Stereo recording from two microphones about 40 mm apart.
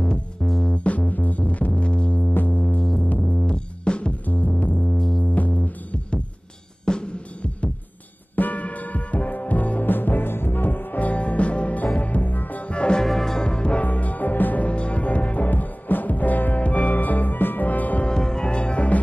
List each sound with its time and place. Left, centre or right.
0.0 s music: left
0.8 s music: left
2.2 s music: left
3.1 s music: left
3.4 s music: left
4.3 s music: left
6.9 s music: left
8.4 s music: left
12.6 s music: left
13.0 s music: centre; by 13.8 s left
13.8 s music: left
14.7 s music: left
18.0 s music: centre